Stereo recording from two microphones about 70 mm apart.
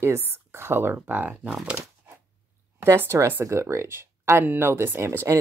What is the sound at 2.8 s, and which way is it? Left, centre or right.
Speech, right.